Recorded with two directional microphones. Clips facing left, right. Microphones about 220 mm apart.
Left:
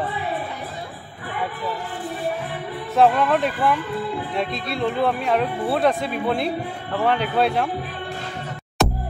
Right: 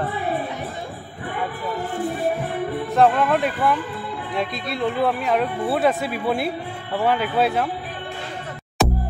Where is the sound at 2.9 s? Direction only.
Centre (ahead or behind).